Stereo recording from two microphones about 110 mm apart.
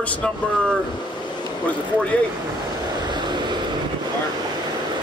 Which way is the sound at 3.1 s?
40° right (ahead or behind).